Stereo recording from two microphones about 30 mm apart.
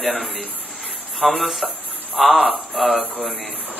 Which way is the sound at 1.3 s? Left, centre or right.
Centre.